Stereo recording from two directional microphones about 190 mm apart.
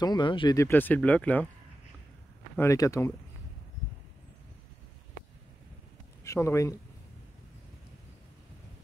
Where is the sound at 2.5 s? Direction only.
15° left (ahead or behind).